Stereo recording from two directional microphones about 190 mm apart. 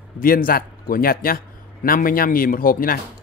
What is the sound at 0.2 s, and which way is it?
Speech, 50° left (ahead or behind).